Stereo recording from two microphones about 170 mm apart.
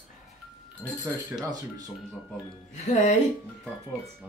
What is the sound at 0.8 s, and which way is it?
Speech, 10° right (ahead or behind).